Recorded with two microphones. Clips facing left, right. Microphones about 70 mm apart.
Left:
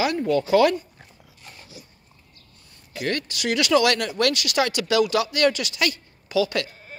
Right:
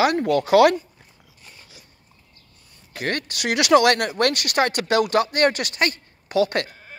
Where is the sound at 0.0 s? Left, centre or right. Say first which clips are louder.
Right 3 dB; right.